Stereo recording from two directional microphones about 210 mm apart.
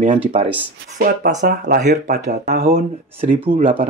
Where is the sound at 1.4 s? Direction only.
50° right (ahead or behind).